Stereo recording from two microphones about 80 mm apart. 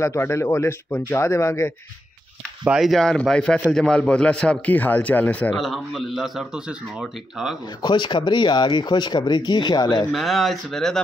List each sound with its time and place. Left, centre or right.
0.0 s speech: left
2.8 s a man's voice: centre
5.6 s a man's voice: centre
7.8 s speech: left
10.1 s a man's voice: centre